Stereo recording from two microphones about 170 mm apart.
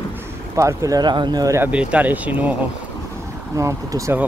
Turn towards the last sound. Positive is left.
turn(degrees=-20)  # may be behind; listen again after turning